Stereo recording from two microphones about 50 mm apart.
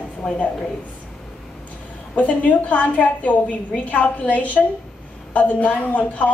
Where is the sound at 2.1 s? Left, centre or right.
Left.